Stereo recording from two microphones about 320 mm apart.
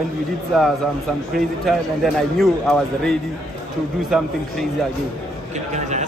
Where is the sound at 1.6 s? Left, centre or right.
Centre.